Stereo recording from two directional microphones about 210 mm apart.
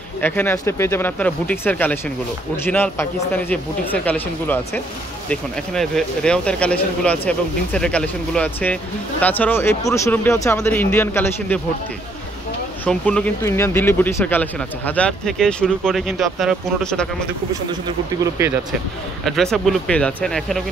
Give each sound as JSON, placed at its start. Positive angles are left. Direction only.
{"t": 0.2, "sound": "speech", "side_deg": 10}
{"t": 12.8, "sound": "speech", "side_deg": 5}
{"t": 17.8, "sound": "speech", "side_deg": -15}
{"t": 19.2, "sound": "speech", "side_deg": 0}